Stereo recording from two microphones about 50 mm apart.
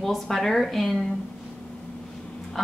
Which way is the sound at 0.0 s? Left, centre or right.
Centre.